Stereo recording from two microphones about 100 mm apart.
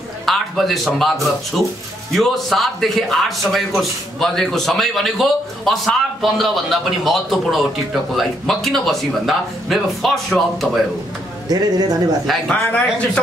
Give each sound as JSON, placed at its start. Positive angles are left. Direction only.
{"t": 0.2, "sound": "a man's voice", "side_deg": 0}
{"t": 11.4, "sound": "a man's voice", "side_deg": -40}
{"t": 12.4, "sound": "speech", "side_deg": 15}